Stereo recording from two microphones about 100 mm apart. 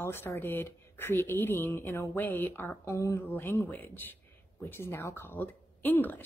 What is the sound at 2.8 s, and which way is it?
Speech, 30° left (ahead or behind).